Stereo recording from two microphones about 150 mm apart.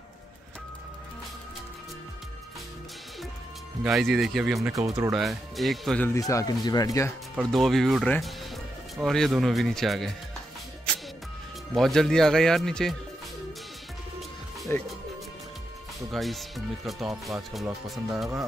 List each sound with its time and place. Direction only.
3.8 s speech: centre (ahead or behind)
4.6 s speech: 20° right (ahead or behind)
5.1 s speech: centre (ahead or behind)
6.0 s speech: 20° left (ahead or behind)
7.3 s speech: centre (ahead or behind)
11.7 s speech: centre (ahead or behind)
14.7 s speech: 15° left (ahead or behind)
16.1 s speech: centre (ahead or behind)